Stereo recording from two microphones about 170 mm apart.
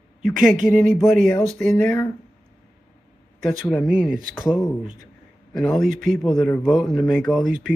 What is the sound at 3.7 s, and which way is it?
Speech, centre (ahead or behind).